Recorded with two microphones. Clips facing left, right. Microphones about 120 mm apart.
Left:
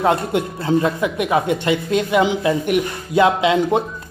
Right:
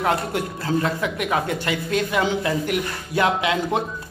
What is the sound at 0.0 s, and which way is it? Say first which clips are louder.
Speech: left 5 dB; 25° left (ahead or behind).